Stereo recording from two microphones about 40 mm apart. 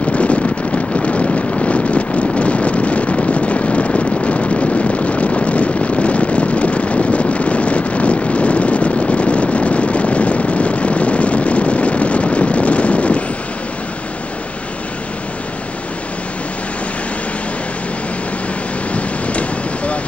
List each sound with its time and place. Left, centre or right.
0.1 s wind noise: left